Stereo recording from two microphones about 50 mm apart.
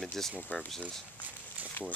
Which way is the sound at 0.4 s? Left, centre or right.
Left.